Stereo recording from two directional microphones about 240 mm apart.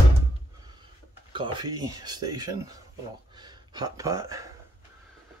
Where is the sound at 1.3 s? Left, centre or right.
Centre.